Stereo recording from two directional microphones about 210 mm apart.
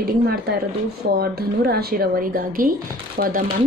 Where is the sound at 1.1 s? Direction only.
45° right (ahead or behind).